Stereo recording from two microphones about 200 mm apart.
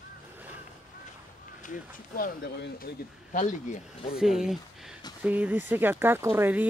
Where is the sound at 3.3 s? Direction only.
40° left (ahead or behind).